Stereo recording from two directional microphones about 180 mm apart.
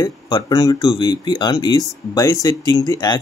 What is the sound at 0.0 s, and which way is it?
Speech, 20° left (ahead or behind).